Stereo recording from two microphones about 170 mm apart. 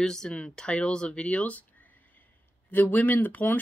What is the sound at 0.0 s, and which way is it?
Speech, 5° left (ahead or behind).